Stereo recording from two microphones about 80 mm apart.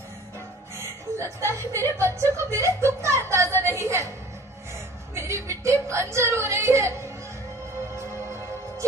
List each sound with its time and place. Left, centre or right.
1.2 s a woman's voice: right
5.1 s whimper: right
7.9 s music: right